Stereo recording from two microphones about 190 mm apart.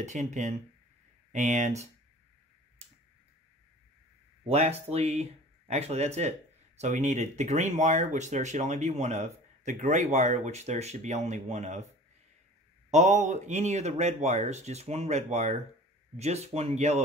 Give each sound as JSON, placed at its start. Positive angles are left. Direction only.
{"t": 0.0, "sound": "speech", "side_deg": -40}
{"t": 4.5, "sound": "speech", "side_deg": -35}
{"t": 12.9, "sound": "speech", "side_deg": -40}